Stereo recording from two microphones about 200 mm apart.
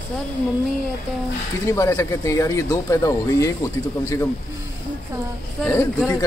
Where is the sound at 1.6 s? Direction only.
15° left (ahead or behind).